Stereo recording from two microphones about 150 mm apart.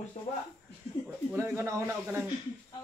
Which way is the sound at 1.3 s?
15° right (ahead or behind).